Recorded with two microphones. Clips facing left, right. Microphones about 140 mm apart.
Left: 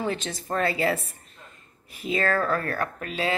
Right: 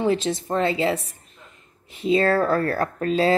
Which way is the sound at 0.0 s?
30° right (ahead or behind).